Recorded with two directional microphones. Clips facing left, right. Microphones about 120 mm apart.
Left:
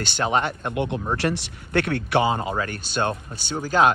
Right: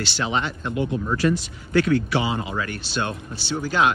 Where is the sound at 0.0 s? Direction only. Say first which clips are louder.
Left 2 dB; 50° left (ahead or behind).